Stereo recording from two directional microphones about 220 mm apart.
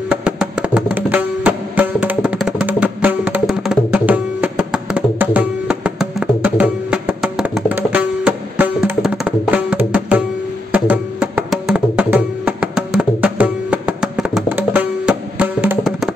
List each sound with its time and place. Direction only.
0.1 s music: 5° right (ahead or behind)